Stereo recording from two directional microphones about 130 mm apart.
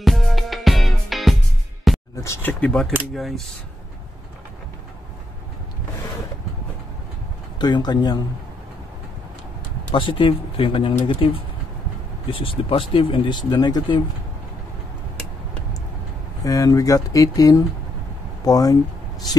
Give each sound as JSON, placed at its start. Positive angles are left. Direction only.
{"t": 0.0, "sound": "music", "side_deg": 0}
{"t": 2.1, "sound": "a sound", "side_deg": 20}
{"t": 2.6, "sound": "speech", "side_deg": 5}
{"t": 7.5, "sound": "speech", "side_deg": 35}
{"t": 9.9, "sound": "speech", "side_deg": 40}
{"t": 16.4, "sound": "speech", "side_deg": 25}